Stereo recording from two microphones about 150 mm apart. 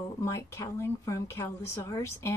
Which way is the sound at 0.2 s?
20° left (ahead or behind).